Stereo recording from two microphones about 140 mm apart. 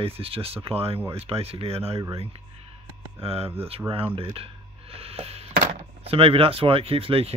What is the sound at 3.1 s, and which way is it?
Speech, 45° right (ahead or behind).